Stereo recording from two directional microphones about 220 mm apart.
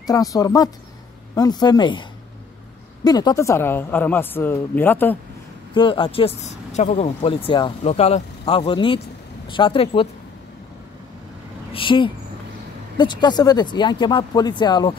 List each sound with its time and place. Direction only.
0.0 s a woman's voice: 15° left (ahead or behind)
5.8 s speech: 20° left (ahead or behind)
11.7 s speech: 25° left (ahead or behind)